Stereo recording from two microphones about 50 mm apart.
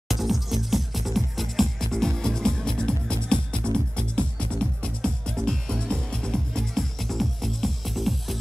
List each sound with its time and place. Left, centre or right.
0.1 s music: centre